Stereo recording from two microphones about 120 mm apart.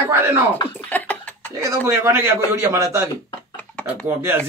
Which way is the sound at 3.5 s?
15° left (ahead or behind).